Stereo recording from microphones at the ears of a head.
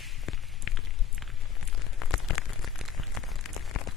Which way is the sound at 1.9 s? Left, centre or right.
Left.